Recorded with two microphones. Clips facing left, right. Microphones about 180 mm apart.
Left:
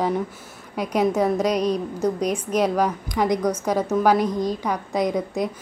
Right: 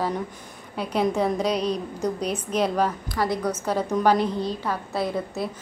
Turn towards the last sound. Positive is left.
turn(degrees=15)  # may be behind; listen again after turning